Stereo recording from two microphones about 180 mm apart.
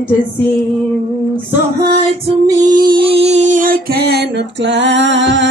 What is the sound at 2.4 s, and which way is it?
Music, 25° right (ahead or behind).